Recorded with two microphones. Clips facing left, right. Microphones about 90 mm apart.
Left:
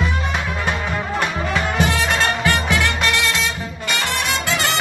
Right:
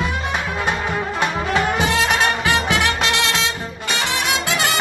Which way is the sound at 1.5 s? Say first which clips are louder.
Right 1 dB; 20° right (ahead or behind).